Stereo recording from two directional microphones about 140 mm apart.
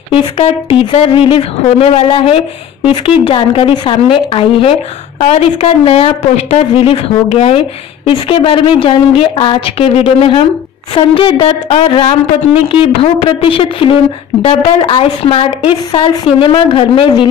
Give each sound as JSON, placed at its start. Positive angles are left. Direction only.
{"t": 0.1, "sound": "a woman's voice", "side_deg": 40}